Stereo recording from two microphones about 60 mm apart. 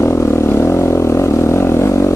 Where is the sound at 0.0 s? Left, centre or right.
Left.